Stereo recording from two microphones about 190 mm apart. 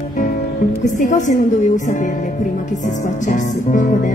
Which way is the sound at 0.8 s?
40° left (ahead or behind).